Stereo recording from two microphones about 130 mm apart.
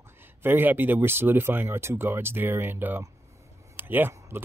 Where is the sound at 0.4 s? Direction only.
15° right (ahead or behind).